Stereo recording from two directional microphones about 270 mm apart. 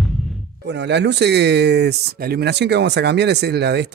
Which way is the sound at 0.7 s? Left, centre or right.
Right.